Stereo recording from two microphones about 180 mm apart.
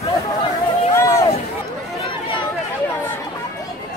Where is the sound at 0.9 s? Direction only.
15° left (ahead or behind).